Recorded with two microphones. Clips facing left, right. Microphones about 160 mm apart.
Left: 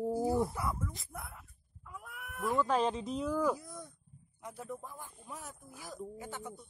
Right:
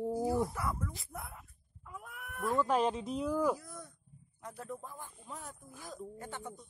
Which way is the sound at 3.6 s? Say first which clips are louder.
Left 1 dB; 15° left (ahead or behind).